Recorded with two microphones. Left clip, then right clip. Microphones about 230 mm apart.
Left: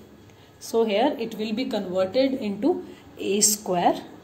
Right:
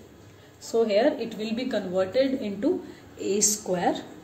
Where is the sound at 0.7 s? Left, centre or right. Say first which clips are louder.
Even; left.